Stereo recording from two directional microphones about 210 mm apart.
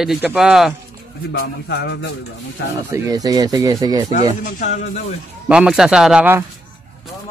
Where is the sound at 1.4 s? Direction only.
50° left (ahead or behind).